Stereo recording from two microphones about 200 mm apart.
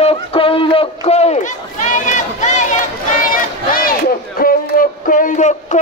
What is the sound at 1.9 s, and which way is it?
Crowd, 40° left (ahead or behind).